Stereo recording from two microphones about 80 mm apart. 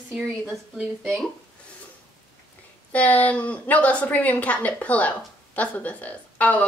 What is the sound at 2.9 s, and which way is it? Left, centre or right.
A woman's voice, centre.